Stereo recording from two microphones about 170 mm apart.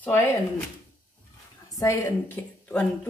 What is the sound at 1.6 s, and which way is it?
A woman's voice, 15° left (ahead or behind).